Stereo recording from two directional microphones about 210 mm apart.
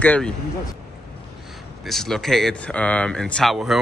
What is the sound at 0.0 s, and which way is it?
Speech, 5° left (ahead or behind).